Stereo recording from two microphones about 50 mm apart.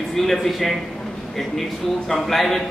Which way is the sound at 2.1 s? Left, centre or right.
Centre.